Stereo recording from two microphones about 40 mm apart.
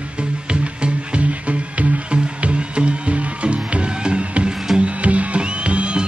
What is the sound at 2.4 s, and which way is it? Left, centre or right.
Music, right.